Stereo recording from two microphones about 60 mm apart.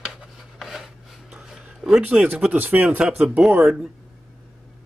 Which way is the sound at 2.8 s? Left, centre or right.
Centre.